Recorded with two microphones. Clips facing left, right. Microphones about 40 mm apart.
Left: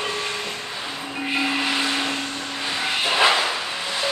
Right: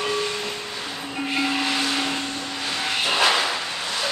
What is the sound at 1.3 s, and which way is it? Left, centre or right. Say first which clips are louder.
Vacuum cleaner: left 1 dB; centre.